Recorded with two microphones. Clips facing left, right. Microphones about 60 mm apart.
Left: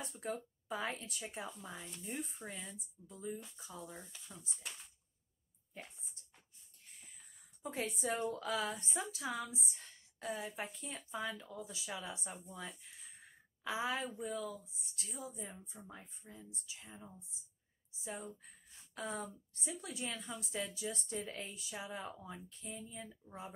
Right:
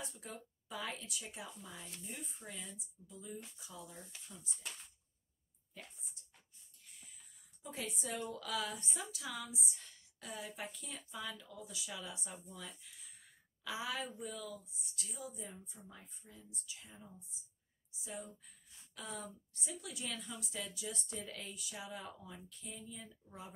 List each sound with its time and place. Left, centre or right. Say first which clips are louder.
0.0 s a woman's voice: left 7 dB; left
7.6 s a woman's voice: left 5 dB; left
13.7 s speech: left 3 dB; left
18.0 s a woman's voice: left 2 dB; left